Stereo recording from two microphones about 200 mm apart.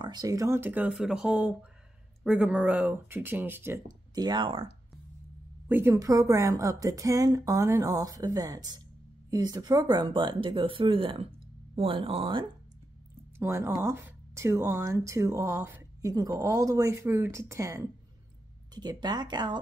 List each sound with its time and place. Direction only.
0.0 s speech: 20° right (ahead or behind)
5.7 s speech: 10° right (ahead or behind); by 12.4 s 25° right (ahead or behind)
13.4 s speech: 15° right (ahead or behind)